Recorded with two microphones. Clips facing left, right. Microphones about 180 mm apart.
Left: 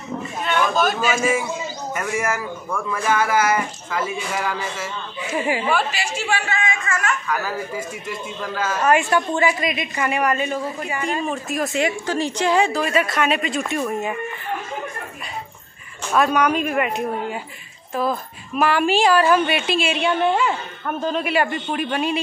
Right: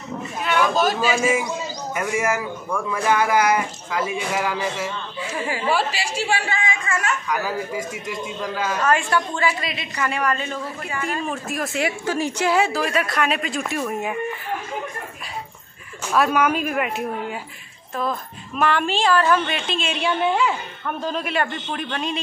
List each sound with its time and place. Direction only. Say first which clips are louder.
0.4 s a sound: right 1 dB; 5° right (ahead or behind)
0.7 s a man's voice: even; 30° right (ahead or behind)
1.1 s speech: even; 15° right (ahead or behind)
5.3 s a woman's voice: left 5 dB; 15° left (ahead or behind)
5.7 s speech: even; 30° right (ahead or behind)
7.2 s speech: even; 15° right (ahead or behind)
8.8 s a woman's voice: left 4 dB; 15° left (ahead or behind)
11.2 s speech: left 3 dB; centre (ahead or behind)
16.1 s a woman's voice: left 1 dB; 5° right (ahead or behind)